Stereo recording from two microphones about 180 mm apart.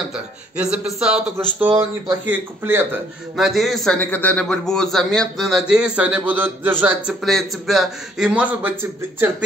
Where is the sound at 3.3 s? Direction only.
Centre (ahead or behind).